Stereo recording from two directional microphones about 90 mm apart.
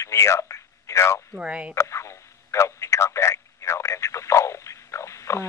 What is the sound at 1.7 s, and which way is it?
Telephone, 35° left (ahead or behind).